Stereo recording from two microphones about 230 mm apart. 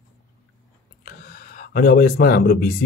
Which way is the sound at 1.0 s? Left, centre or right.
Left.